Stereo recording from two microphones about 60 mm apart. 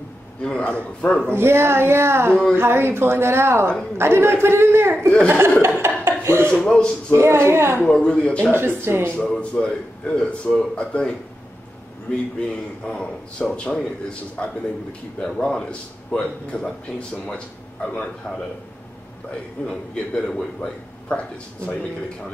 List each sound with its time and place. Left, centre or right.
0.4 s a man's voice: centre
1.3 s a man's voice: right
5.8 s a sound: right
6.2 s dishes: right
6.6 s a man's voice: centre
7.1 s a man's voice: right
7.8 s a man's voice: centre
8.5 s a woman's voice: right
9.1 s a man's voice: centre
19.6 s a man's voice: centre